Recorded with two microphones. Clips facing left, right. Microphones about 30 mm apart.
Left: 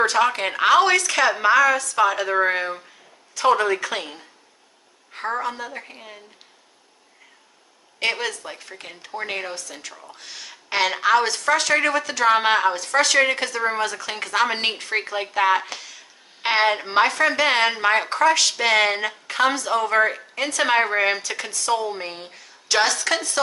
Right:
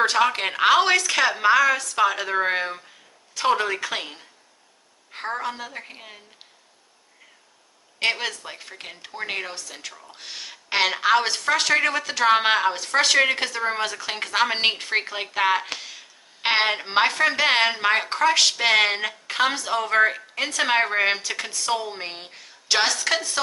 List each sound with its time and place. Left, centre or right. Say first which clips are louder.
0.2 s speech: left 1 dB; centre
8.0 s speech: even; centre
9.6 s speech: left 1 dB; centre
15.7 s a sound: right 2 dB; centre
16.4 s speech: left 2 dB; centre